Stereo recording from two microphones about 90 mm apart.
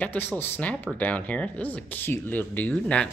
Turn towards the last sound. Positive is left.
turn(degrees=15)  # may be behind; listen again after turning